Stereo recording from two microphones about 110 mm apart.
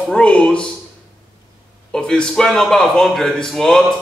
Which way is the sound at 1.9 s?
5° left (ahead or behind).